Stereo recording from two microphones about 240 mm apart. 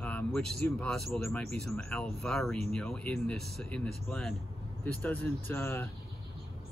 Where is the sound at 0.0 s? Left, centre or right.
Centre.